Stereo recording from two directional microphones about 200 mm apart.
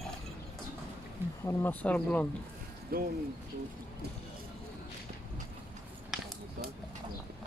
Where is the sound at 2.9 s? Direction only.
50° right (ahead or behind).